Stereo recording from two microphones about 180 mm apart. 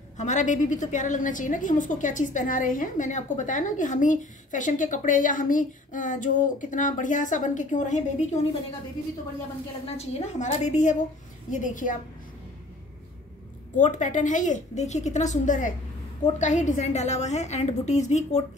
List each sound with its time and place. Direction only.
0.2 s a woman's voice: 45° left (ahead or behind)
9.8 s a woman's voice: 35° left (ahead or behind)
13.7 s a woman's voice: 45° left (ahead or behind)